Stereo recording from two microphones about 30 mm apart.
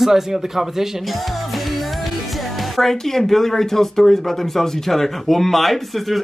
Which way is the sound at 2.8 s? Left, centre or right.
Centre.